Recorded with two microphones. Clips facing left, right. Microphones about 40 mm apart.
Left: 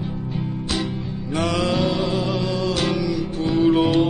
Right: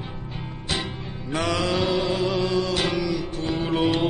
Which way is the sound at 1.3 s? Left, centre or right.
Centre.